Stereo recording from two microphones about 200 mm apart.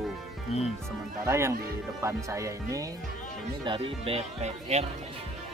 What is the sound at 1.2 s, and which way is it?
Speech, 15° right (ahead or behind).